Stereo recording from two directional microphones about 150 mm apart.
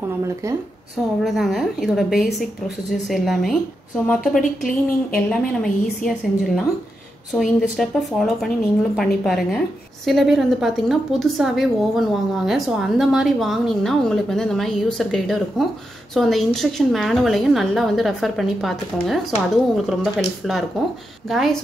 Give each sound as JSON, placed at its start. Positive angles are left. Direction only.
{"t": 0.9, "sound": "a woman's voice", "side_deg": 0}
{"t": 4.4, "sound": "speech", "side_deg": 60}
{"t": 5.1, "sound": "a woman's voice", "side_deg": 5}